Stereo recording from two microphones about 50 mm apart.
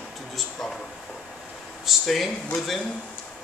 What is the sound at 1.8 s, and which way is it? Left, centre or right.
Speech, centre.